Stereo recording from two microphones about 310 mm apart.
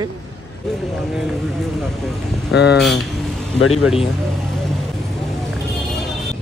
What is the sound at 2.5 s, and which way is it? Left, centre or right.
Speech, left.